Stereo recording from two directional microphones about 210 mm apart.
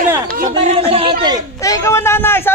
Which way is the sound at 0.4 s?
30° right (ahead or behind).